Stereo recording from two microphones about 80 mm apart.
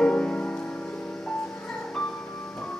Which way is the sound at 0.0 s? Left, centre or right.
Centre.